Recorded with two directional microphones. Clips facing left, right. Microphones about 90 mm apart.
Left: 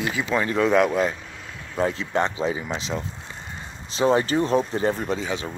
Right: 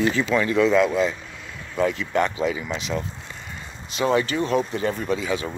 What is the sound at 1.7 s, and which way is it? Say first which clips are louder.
Speech: right 1 dB; 30° left (ahead or behind).